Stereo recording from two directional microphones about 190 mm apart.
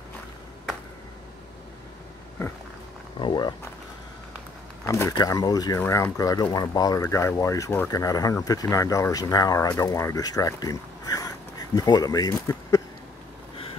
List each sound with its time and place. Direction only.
3.2 s speech: 25° left (ahead or behind)
4.8 s speech: 15° left (ahead or behind)